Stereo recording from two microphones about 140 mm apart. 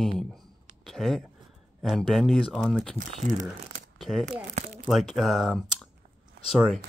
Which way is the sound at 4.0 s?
Centre (ahead or behind).